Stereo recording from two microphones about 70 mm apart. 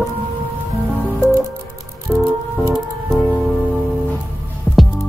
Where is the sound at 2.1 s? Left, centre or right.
Centre.